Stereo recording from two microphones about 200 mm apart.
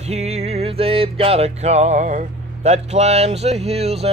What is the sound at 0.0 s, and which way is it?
Mantra, 35° right (ahead or behind).